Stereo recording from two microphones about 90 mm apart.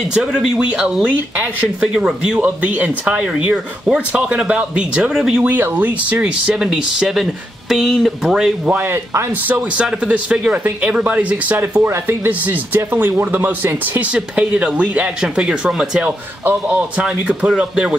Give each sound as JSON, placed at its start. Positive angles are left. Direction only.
{"t": 0.1, "sound": "speech", "side_deg": -5}
{"t": 2.4, "sound": "speech", "side_deg": -15}
{"t": 8.7, "sound": "speech", "side_deg": -25}
{"t": 9.8, "sound": "speech", "side_deg": -15}
{"t": 16.1, "sound": "speech", "side_deg": -20}